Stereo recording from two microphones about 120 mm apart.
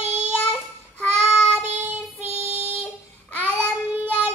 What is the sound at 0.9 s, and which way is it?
Child singing, 10° left (ahead or behind).